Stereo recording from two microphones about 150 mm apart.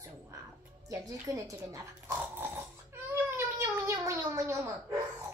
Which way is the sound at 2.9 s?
15° right (ahead or behind).